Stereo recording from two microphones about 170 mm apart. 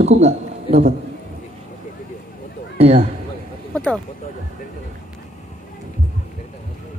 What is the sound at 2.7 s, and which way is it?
Speech, 35° right (ahead or behind).